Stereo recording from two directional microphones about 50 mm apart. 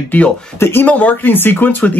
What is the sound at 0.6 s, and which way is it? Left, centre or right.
Speech, left.